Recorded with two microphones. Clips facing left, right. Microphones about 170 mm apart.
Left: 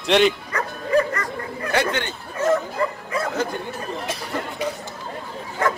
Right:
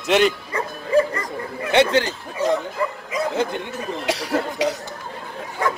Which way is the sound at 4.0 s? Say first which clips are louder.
Right 9 dB; 75° right (ahead or behind).